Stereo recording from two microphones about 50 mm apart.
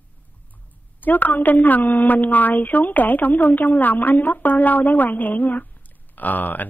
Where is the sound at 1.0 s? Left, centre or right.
Left.